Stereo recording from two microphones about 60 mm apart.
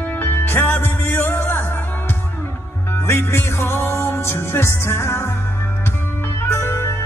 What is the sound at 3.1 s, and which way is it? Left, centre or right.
Music, left.